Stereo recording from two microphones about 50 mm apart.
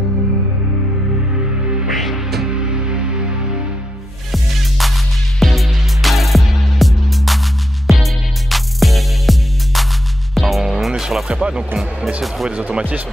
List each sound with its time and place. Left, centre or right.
1.9 s music: centre
2.5 s music: centre
4.3 s music: centre
11.4 s speech: right